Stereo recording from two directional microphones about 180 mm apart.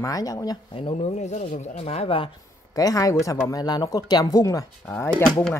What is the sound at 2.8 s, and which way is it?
Speech, 20° left (ahead or behind).